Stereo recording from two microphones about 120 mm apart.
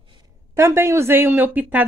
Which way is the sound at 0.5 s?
20° right (ahead or behind).